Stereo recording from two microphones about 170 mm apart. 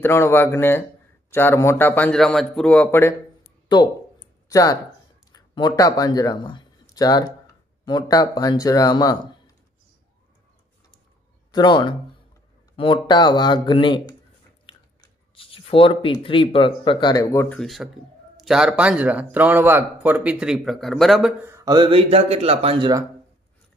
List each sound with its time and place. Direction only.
0.0 s a man's voice: 15° left (ahead or behind)
3.6 s speech: 25° left (ahead or behind)
11.5 s speech: 25° left (ahead or behind)
17.6 s speech: centre (ahead or behind); by 23.0 s 25° right (ahead or behind)